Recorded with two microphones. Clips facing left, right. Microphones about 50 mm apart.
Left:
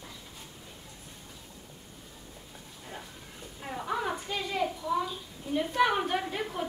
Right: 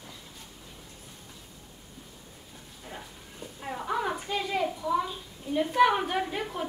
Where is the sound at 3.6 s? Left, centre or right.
Centre.